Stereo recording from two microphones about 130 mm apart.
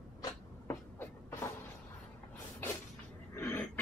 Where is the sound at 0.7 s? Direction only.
20° left (ahead or behind).